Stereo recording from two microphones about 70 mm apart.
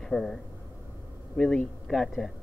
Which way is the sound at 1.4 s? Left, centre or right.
Centre.